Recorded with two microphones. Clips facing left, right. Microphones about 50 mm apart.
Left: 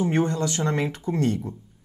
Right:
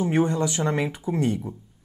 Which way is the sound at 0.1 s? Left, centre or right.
Centre.